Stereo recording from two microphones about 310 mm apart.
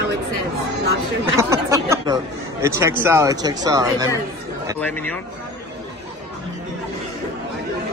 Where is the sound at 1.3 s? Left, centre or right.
Centre.